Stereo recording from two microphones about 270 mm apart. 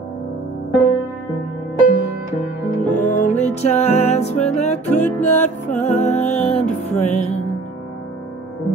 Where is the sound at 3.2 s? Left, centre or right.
Left.